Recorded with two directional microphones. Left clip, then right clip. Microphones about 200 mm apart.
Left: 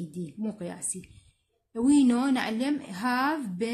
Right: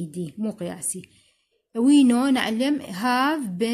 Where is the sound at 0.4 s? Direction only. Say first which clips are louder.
Right 5 dB; 45° right (ahead or behind).